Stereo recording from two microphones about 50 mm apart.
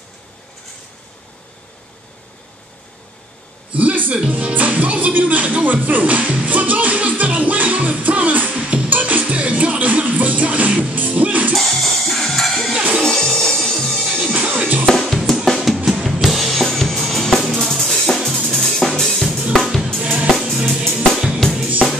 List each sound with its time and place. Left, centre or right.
3.7 s a sound: right
4.3 s music: right
11.5 s music: centre
14.3 s music: right
14.9 s drum: centre
15.7 s music: centre
16.2 s drum kit: centre
20.0 s drum kit: right
20.5 s music: centre
21.1 s drum kit: centre
21.4 s drum kit: centre